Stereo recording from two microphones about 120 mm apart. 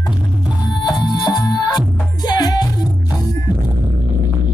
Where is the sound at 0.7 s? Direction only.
35° left (ahead or behind).